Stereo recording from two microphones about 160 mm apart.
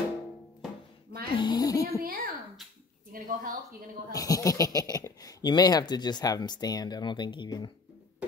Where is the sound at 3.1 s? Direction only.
60° right (ahead or behind).